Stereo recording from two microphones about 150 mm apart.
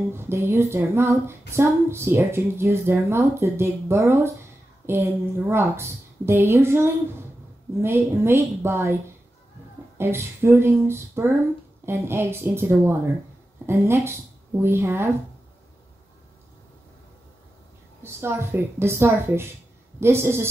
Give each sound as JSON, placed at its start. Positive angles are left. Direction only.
{"t": 0.1, "sound": "a woman's voice", "side_deg": -15}
{"t": 9.9, "sound": "a woman's voice", "side_deg": -15}
{"t": 18.0, "sound": "a woman's voice", "side_deg": -15}